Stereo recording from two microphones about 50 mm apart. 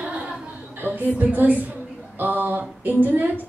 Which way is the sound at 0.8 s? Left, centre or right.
Right.